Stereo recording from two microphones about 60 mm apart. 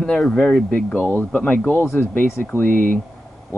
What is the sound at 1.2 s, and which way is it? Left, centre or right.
Speech, left.